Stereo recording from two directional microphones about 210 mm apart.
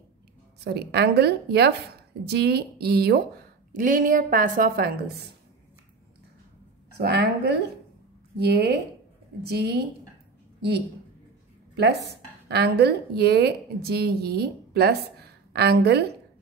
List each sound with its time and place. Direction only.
0.7 s a woman's voice: 50° right (ahead or behind)
7.0 s a woman's voice: 50° right (ahead or behind)
12.4 s a woman's voice: 50° right (ahead or behind)